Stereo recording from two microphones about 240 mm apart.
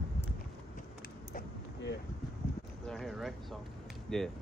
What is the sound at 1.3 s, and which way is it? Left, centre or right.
Vehicle, left.